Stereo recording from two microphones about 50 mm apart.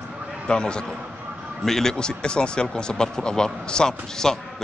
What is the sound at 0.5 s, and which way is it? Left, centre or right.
Speech, centre.